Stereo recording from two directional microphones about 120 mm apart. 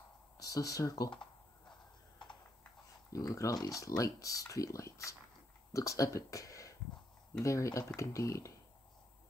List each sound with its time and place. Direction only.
0.5 s speech: 30° left (ahead or behind)
2.2 s typing: 45° left (ahead or behind)
3.1 s speech: 30° left (ahead or behind)